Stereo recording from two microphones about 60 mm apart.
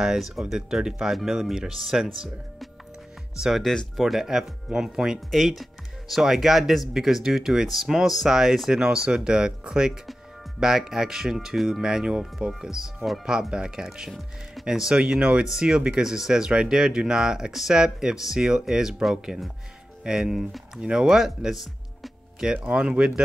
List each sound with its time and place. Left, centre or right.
0.0 s speech: centre
3.3 s speech: centre
5.3 s speech: centre
22.7 s speech: centre